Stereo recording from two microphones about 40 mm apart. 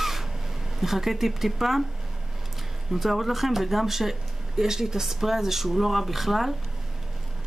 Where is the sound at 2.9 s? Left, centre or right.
Centre.